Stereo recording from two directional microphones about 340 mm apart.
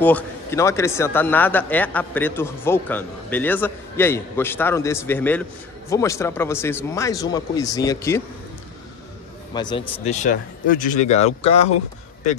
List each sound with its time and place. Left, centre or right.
0.0 s speech: centre
9.5 s speech: centre
10.0 s speech: left